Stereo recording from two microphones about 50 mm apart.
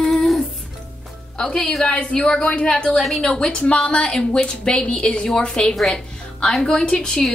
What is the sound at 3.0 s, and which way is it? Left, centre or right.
Speech, centre.